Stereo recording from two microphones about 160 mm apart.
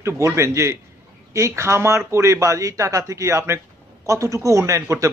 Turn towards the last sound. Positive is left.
turn(degrees=-20)  # may be behind; listen again after turning